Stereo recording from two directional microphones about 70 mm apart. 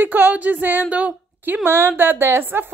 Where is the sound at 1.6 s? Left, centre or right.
Right.